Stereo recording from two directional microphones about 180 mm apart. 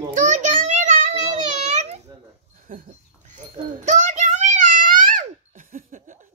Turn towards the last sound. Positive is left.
turn(degrees=-50)  # may be behind; listen again after turning